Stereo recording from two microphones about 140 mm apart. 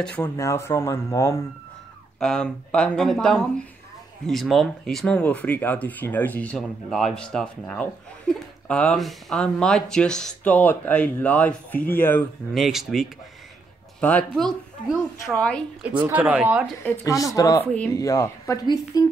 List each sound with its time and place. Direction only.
0.0 s speech: 10° left (ahead or behind)
2.1 s speech: 5° left (ahead or behind)
12.5 s speech: centre (ahead or behind)
16.1 s speech: 10° right (ahead or behind)
17.0 s speech: 25° left (ahead or behind)